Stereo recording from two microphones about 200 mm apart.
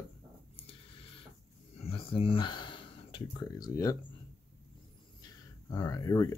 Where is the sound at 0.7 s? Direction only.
25° left (ahead or behind).